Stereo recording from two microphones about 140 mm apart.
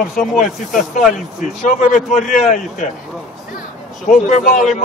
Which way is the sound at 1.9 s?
65° left (ahead or behind).